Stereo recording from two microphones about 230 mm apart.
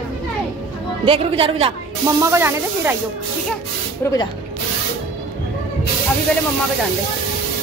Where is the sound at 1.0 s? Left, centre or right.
Right.